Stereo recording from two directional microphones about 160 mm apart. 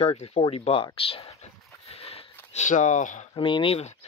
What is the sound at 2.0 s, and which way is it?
Sniff, 40° left (ahead or behind).